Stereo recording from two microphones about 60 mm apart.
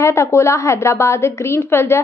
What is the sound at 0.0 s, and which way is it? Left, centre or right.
A woman's voice, left.